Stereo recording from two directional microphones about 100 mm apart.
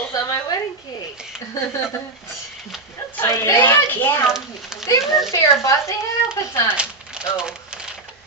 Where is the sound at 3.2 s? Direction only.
25° left (ahead or behind).